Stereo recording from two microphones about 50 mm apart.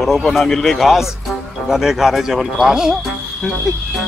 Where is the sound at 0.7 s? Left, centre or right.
Centre.